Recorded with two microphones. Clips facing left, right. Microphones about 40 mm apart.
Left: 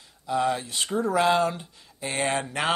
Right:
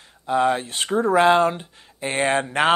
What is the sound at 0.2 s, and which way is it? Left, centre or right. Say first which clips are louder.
Speech: right 5 dB; right.